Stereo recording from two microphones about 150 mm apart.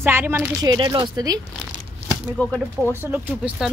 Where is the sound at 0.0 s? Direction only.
15° right (ahead or behind).